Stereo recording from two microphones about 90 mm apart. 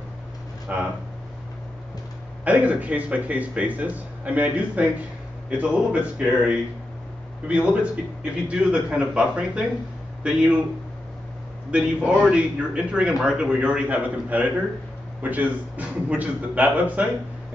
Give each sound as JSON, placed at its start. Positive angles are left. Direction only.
{"t": 0.7, "sound": "a man's voice", "side_deg": -15}
{"t": 2.4, "sound": "a man's voice", "side_deg": -15}
{"t": 11.7, "sound": "a man's voice", "side_deg": -10}